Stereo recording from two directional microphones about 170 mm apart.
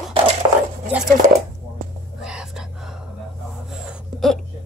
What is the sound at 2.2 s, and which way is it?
Whispering, 5° right (ahead or behind).